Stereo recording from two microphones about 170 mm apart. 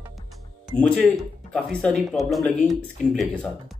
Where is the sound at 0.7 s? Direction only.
5° left (ahead or behind).